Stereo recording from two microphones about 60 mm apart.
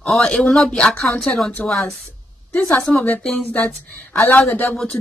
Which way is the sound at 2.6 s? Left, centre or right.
Left.